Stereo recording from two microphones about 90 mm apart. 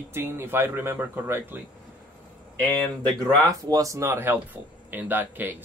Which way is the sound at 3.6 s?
40° right (ahead or behind).